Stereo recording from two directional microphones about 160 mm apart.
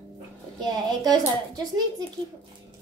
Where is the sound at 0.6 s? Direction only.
25° right (ahead or behind).